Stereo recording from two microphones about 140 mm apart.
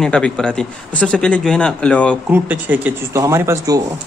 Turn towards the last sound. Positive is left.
turn(degrees=-20)  # may be behind; listen again after turning